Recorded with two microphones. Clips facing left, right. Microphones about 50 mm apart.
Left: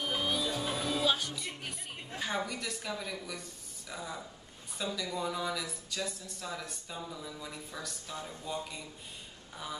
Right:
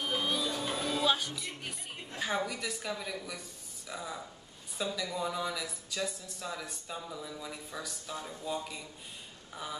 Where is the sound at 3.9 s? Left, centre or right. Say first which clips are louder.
Right 1 dB; centre.